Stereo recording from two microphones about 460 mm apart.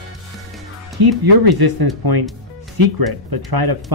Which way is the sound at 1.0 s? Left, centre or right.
Right.